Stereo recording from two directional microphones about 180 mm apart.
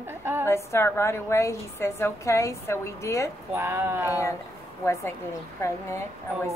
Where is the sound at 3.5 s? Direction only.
15° right (ahead or behind).